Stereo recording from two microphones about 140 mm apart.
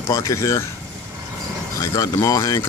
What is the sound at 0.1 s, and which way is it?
Speech, 25° left (ahead or behind).